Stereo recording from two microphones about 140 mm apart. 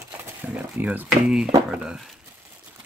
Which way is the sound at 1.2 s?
Centre (ahead or behind).